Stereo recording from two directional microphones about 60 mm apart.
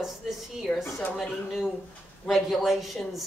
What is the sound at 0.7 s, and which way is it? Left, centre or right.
Speech, centre.